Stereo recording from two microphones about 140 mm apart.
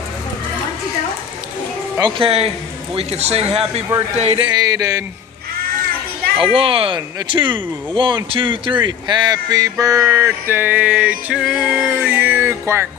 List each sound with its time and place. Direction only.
2.0 s speech: 35° right (ahead or behind)
4.6 s speech: 25° right (ahead or behind)
6.4 s speech: 40° right (ahead or behind)
10.1 s music: 15° right (ahead or behind)